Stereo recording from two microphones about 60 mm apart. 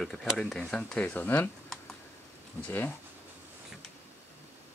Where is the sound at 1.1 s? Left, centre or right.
Left.